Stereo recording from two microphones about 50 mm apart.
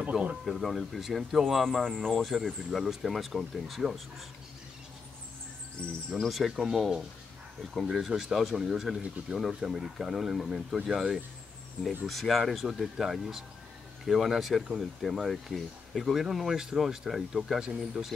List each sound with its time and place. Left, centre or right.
0.1 s speech: centre
5.8 s speech: centre
6.2 s speech: centre
7.9 s speech: centre
18.0 s speech: right